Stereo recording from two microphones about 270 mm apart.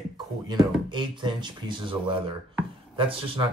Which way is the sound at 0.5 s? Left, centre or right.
Centre.